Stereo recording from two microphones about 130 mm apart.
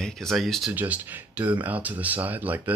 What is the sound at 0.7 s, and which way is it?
Speech, 15° right (ahead or behind).